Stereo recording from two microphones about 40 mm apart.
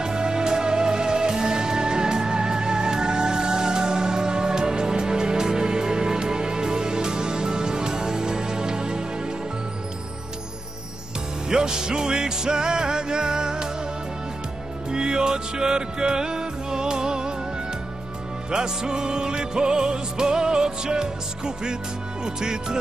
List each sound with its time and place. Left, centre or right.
0.0 s music: centre
11.4 s music: centre
14.9 s music: centre
18.5 s music: centre